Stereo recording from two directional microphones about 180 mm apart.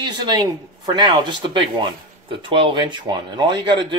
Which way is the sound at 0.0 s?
25° right (ahead or behind).